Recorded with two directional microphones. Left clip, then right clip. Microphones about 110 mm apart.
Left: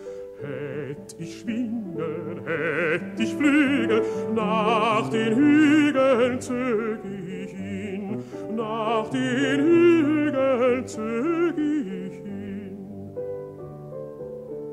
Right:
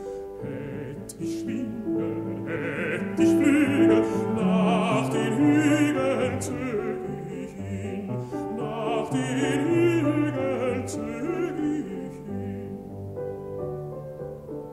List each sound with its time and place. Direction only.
2.0 s music: 20° left (ahead or behind)
3.8 s music: 5° left (ahead or behind)
8.5 s music: 15° left (ahead or behind)